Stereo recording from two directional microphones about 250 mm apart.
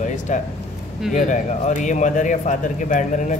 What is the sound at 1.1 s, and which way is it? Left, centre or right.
Speech, left.